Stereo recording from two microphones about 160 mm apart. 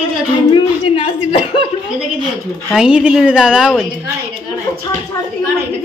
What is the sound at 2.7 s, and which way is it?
A woman's voice, 5° right (ahead or behind).